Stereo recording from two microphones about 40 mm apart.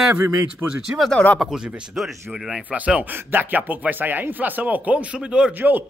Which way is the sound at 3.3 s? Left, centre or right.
Right.